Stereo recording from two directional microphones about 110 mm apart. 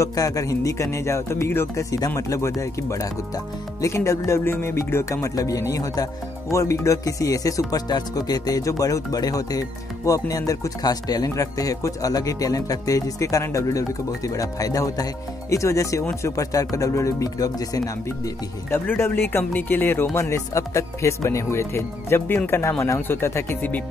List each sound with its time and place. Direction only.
0.0 s speech: 30° left (ahead or behind)
18.0 s speech: 20° left (ahead or behind)